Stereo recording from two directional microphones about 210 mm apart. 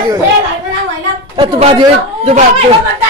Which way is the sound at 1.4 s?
25° right (ahead or behind).